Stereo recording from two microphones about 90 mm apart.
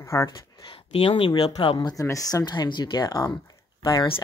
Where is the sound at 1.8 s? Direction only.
40° left (ahead or behind).